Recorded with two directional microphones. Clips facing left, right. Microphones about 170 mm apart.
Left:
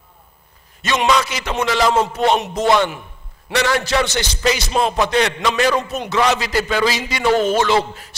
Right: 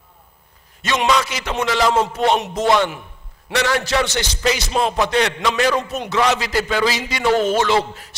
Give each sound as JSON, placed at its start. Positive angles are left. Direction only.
{"t": 0.8, "sound": "a man's voice", "side_deg": 15}